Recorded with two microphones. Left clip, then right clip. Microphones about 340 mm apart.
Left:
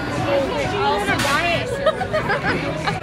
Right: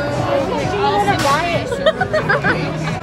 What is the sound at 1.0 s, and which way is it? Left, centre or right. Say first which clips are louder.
Music: right 3 dB; right.